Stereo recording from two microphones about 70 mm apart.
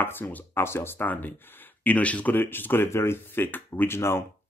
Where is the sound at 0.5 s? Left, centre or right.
Left.